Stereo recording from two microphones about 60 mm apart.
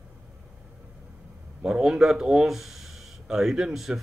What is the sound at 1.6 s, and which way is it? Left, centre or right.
Speech, centre.